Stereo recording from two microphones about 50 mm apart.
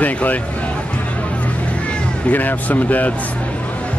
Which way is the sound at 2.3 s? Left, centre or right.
Left.